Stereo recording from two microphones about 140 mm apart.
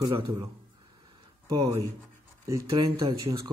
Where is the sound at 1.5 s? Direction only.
25° right (ahead or behind).